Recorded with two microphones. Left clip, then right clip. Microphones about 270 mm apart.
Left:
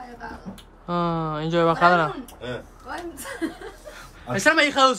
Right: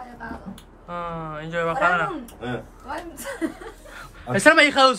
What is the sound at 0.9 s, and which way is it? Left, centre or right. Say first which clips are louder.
Speech: left 5 dB; left.